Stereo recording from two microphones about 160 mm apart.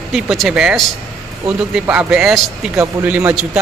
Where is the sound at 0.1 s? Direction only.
5° right (ahead or behind).